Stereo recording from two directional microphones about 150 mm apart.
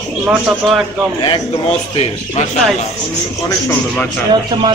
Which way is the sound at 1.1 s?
30° left (ahead or behind).